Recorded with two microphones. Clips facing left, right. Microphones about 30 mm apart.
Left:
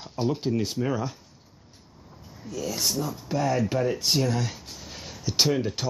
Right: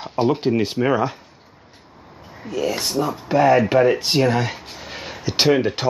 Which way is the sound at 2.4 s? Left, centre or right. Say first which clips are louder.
Right 6 dB; right.